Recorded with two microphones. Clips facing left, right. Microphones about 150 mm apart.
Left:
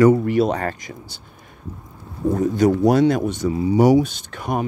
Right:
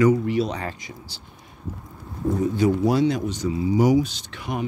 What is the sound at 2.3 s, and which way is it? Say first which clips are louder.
Speech: left 4 dB; 45° left (ahead or behind).